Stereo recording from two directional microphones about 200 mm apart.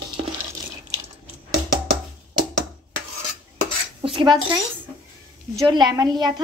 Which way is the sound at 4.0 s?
25° right (ahead or behind).